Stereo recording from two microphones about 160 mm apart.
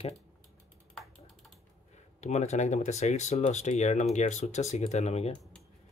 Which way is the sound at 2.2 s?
45° left (ahead or behind).